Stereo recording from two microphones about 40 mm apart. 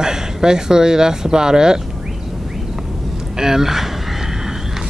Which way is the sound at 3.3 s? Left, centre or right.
Centre.